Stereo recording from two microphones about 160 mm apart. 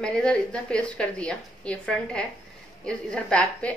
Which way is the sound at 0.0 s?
5° left (ahead or behind).